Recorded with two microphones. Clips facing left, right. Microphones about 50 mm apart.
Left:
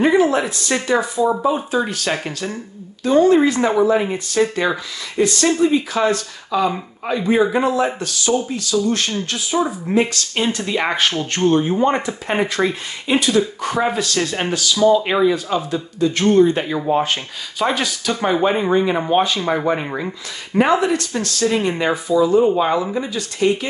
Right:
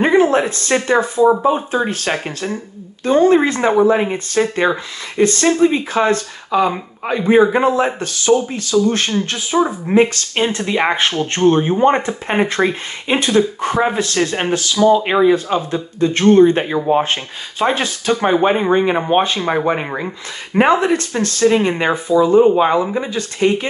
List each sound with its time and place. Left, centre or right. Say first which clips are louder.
0.0 s a sound: right 2 dB; right
1.0 s speech: right 5 dB; right
3.0 s speech: right 1 dB; right